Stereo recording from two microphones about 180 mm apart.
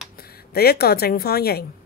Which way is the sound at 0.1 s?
60° left (ahead or behind).